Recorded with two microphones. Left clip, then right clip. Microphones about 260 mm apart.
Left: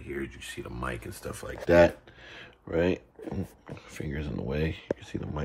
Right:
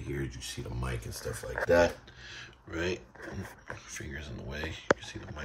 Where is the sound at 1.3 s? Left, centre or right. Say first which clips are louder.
Left 4 dB; left.